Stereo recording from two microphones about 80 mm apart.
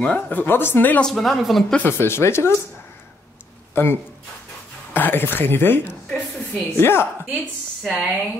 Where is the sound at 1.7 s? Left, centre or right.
Left.